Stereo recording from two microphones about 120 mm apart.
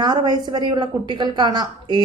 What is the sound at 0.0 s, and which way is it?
A woman's voice, 35° right (ahead or behind).